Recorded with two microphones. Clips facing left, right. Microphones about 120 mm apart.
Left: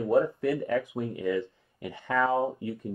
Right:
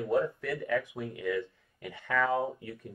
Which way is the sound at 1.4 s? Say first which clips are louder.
Left 3 dB; 30° left (ahead or behind).